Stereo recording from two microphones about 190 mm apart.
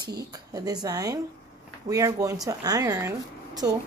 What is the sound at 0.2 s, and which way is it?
Speech, 20° right (ahead or behind).